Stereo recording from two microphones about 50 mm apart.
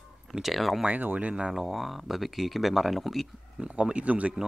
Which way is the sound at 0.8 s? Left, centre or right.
Right.